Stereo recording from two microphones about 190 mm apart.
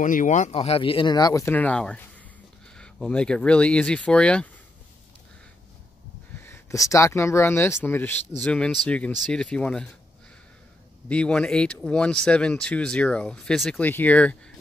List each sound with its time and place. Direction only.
0.0 s speech: 45° left (ahead or behind); by 4.5 s 5° left (ahead or behind)
6.4 s speech: 15° left (ahead or behind)
11.1 s speech: 5° left (ahead or behind)